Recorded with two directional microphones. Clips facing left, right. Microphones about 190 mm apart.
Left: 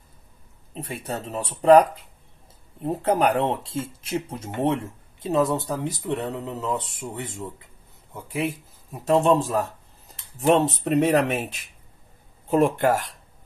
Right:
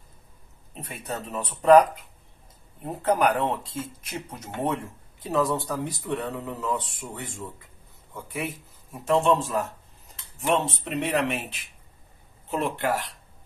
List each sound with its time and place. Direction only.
0.7 s speech: 30° left (ahead or behind)
2.9 s speech: 25° left (ahead or behind)
9.2 s speech: 35° left (ahead or behind)